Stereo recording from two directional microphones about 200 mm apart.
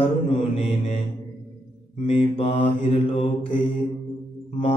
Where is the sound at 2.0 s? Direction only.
30° left (ahead or behind).